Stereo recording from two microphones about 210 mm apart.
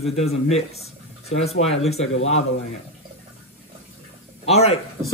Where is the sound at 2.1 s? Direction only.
75° left (ahead or behind).